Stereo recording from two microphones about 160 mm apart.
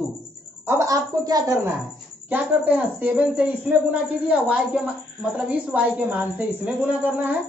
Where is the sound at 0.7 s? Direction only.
20° right (ahead or behind).